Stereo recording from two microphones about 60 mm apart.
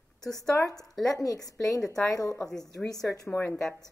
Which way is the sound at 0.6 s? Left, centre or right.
Left.